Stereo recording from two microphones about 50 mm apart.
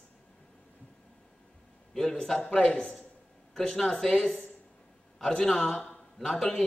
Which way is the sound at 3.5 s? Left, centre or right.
Centre.